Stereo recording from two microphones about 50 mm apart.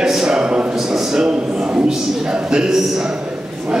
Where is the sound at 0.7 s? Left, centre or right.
Centre.